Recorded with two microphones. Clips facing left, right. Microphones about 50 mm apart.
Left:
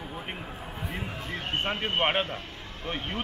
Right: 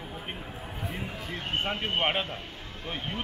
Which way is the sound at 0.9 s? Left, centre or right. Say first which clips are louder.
Left 2 dB; centre.